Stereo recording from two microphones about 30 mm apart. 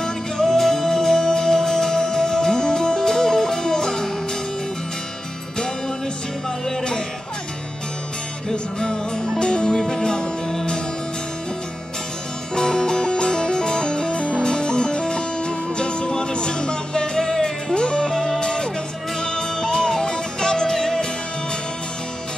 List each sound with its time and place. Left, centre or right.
0.0 s music: left
8.5 s music: left
12.5 s music: left